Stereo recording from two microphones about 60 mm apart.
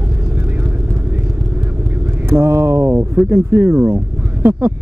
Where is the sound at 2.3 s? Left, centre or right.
Right.